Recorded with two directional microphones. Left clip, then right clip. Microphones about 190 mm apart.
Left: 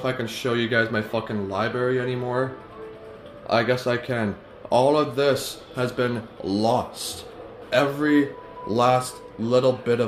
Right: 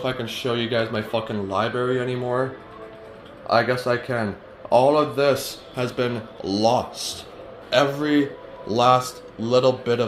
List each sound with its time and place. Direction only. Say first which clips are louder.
0.0 s a man's voice: even; 10° left (ahead or behind)
1.3 s a man's voice: right 3 dB; 5° left (ahead or behind)
3.4 s a man's voice: right 2 dB; 20° left (ahead or behind)